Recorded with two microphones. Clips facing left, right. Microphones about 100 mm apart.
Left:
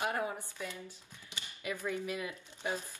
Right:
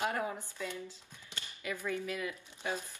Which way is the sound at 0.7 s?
15° left (ahead or behind).